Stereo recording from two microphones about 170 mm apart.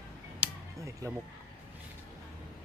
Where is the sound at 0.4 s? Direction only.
15° right (ahead or behind).